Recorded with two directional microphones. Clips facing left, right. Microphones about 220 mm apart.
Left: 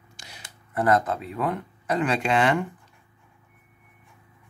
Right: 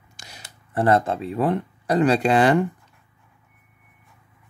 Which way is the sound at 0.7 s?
30° right (ahead or behind).